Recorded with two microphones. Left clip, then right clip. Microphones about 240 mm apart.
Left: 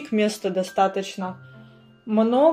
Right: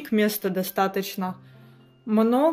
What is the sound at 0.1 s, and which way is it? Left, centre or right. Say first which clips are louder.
Speech: left 1 dB; right.